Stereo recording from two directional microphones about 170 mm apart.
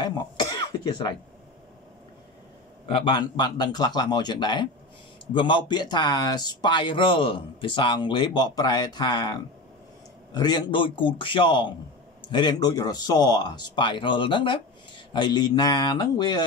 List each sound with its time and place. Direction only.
0.0 s cough: 25° left (ahead or behind)
2.9 s speech: 25° left (ahead or behind)